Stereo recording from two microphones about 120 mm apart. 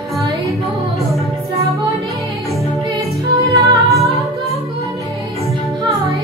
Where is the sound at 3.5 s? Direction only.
25° right (ahead or behind).